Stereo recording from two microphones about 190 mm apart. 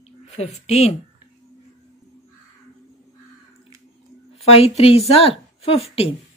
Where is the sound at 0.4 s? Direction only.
35° left (ahead or behind).